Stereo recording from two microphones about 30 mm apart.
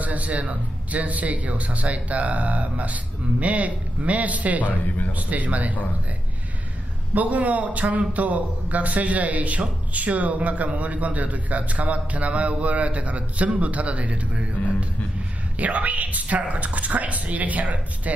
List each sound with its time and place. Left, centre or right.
0.0 s a man's voice: right
7.2 s a man's voice: right
15.5 s a man's voice: right